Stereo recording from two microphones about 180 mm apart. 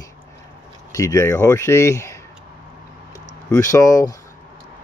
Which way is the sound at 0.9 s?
15° left (ahead or behind).